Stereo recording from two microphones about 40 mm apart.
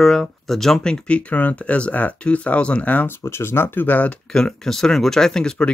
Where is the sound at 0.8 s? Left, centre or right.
Left.